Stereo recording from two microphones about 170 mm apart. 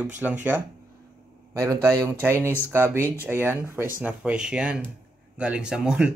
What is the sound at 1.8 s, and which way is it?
Speech, 20° right (ahead or behind).